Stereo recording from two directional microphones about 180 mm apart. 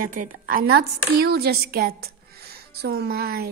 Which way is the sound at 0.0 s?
50° right (ahead or behind).